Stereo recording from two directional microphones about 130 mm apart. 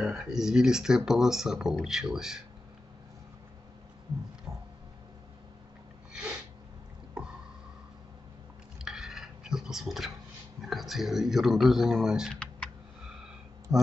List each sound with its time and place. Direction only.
0.0 s speech: 5° right (ahead or behind)
4.5 s a sound: 25° right (ahead or behind)
6.1 s sneeze: 5° right (ahead or behind)
8.7 s dishes: 5° right (ahead or behind)
10.6 s speech: centre (ahead or behind)
13.7 s speech: 5° right (ahead or behind)